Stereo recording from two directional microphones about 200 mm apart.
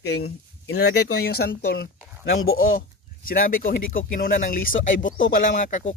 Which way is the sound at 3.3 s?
45° left (ahead or behind).